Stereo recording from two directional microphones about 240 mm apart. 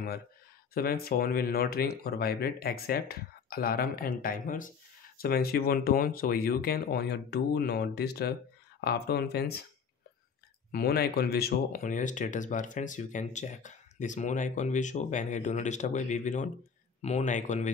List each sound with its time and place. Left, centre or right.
0.7 s speech: left
10.7 s speech: left